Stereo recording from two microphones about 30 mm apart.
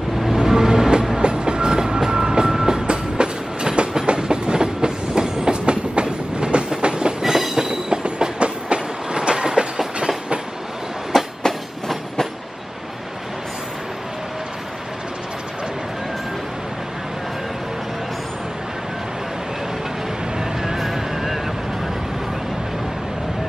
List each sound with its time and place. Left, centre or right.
0.3 s vehicle: centre
1.2 s train: right
2.9 s train: right
7.2 s train: centre
8.0 s train: right
11.1 s train: centre
20.3 s vehicle: centre